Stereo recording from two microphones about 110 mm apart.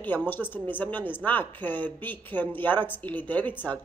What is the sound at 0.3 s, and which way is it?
Speech, 15° left (ahead or behind).